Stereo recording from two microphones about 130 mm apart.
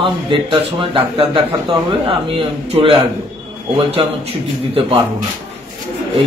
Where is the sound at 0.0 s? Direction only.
40° right (ahead or behind).